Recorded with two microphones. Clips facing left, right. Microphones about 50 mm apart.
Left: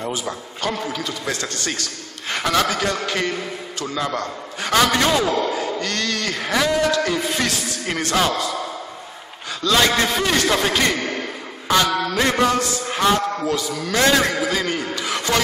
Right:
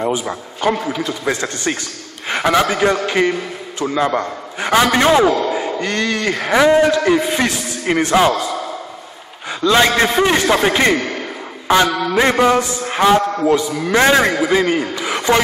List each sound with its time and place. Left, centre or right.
0.0 s a man's voice: right
9.6 s a man's voice: right